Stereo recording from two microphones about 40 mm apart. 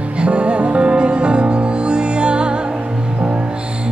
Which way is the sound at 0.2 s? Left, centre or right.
Right.